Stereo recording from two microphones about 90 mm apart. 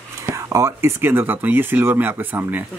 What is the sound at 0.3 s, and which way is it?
Speech, 35° right (ahead or behind).